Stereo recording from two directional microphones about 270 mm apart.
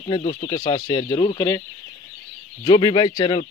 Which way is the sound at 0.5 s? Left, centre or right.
Centre.